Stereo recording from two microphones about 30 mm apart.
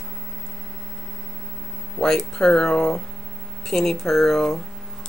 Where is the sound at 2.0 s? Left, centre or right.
Left.